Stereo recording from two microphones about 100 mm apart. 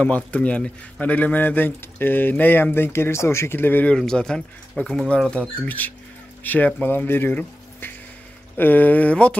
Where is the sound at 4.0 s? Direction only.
5° left (ahead or behind).